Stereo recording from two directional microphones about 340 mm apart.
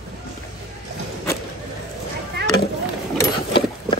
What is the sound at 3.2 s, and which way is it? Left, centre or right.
Sewing machine, centre.